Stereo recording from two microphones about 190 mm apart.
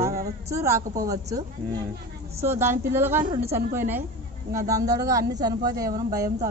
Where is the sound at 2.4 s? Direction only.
10° right (ahead or behind).